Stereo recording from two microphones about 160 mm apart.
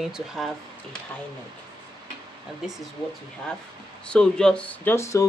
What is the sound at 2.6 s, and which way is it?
Speech, 5° right (ahead or behind).